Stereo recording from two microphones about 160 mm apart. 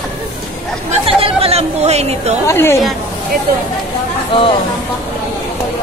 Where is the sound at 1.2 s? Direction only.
40° right (ahead or behind).